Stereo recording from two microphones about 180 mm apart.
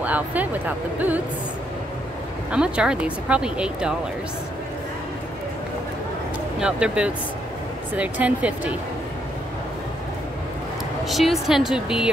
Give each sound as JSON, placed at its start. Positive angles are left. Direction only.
{"t": 0.0, "sound": "speech", "side_deg": -10}
{"t": 2.5, "sound": "speech", "side_deg": -5}
{"t": 6.6, "sound": "speech", "side_deg": -5}
{"t": 11.1, "sound": "speech", "side_deg": 0}